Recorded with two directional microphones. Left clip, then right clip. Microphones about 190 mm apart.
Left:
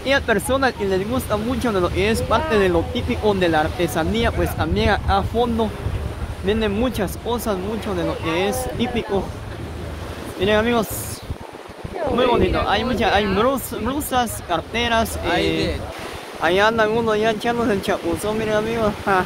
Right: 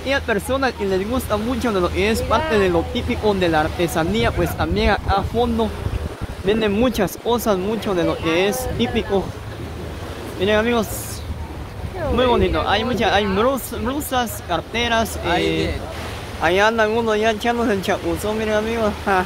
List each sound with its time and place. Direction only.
0.0 s speech: 15° left (ahead or behind); by 5.7 s 5° right (ahead or behind)
6.4 s speech: 20° right (ahead or behind)
10.4 s speech: centre (ahead or behind)
12.2 s speech: centre (ahead or behind)
16.3 s speech: centre (ahead or behind)